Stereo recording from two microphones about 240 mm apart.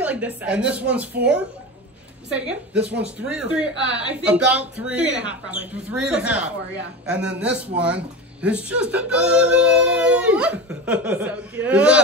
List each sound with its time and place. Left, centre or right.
0.0 s speech: centre
2.3 s speech: centre